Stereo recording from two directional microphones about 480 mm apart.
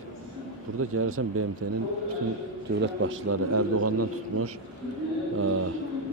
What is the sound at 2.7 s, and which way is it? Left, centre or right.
A man's voice, right.